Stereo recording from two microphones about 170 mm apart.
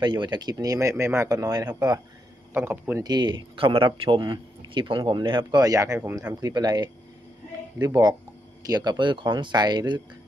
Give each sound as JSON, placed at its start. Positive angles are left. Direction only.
{"t": 0.0, "sound": "a man's voice", "side_deg": -25}
{"t": 3.0, "sound": "a man's voice", "side_deg": -25}